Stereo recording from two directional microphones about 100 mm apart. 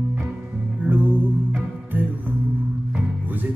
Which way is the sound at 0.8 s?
20° right (ahead or behind).